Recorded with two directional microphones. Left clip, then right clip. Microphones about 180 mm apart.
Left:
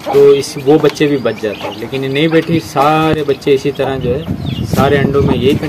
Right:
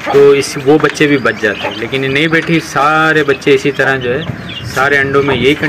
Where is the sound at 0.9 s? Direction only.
15° left (ahead or behind).